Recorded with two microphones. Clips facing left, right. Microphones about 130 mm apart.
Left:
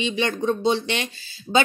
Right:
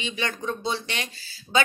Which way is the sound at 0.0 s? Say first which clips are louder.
Left 7 dB; 25° left (ahead or behind).